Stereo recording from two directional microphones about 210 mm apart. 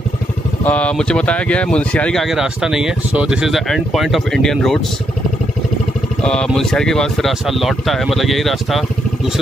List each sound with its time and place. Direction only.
0.7 s speech: 5° left (ahead or behind)
6.2 s speech: 5° left (ahead or behind)